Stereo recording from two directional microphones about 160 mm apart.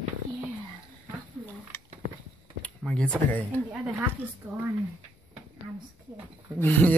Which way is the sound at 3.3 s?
10° left (ahead or behind).